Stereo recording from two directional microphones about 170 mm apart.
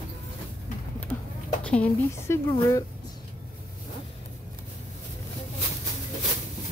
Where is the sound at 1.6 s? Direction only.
10° left (ahead or behind).